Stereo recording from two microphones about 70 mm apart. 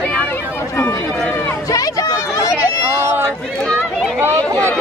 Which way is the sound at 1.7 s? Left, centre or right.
Left.